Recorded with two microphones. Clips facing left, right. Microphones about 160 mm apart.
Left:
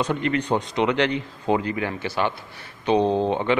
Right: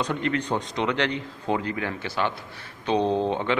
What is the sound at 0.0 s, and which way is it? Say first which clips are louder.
A man's voice: left 3 dB; 5° left (ahead or behind).